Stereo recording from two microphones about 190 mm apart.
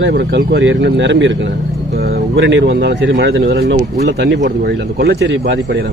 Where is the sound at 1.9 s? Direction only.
55° right (ahead or behind).